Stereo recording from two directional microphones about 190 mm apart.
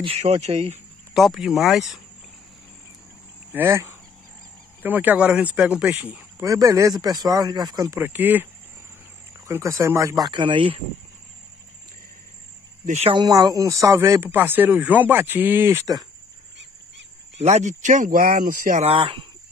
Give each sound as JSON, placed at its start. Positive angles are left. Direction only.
{"t": 0.0, "sound": "speech", "side_deg": -35}
{"t": 1.1, "sound": "speech", "side_deg": 0}
{"t": 3.5, "sound": "speech", "side_deg": -10}
{"t": 9.5, "sound": "speech", "side_deg": -15}
{"t": 12.8, "sound": "speech", "side_deg": -40}
{"t": 13.1, "sound": "speech", "side_deg": -20}
{"t": 17.4, "sound": "speech", "side_deg": -35}